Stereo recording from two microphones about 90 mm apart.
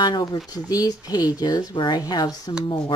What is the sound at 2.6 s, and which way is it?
Speech, 60° left (ahead or behind).